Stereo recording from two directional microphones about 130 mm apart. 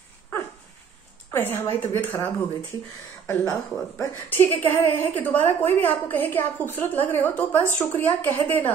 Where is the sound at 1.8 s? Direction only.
20° left (ahead or behind).